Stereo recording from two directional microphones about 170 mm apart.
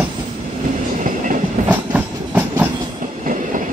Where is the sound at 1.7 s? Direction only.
10° right (ahead or behind).